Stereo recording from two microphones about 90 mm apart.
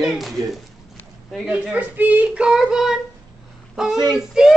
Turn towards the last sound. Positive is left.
turn(degrees=-10)  # may be behind; listen again after turning